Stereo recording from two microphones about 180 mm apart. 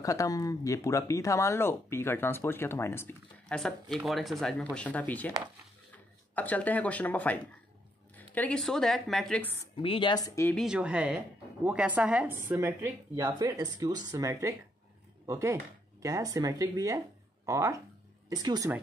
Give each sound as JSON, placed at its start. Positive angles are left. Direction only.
{"t": 0.0, "sound": "speech", "side_deg": 20}
{"t": 6.3, "sound": "speech", "side_deg": 10}
{"t": 9.8, "sound": "speech", "side_deg": 30}
{"t": 10.5, "sound": "a woman's voice", "side_deg": 0}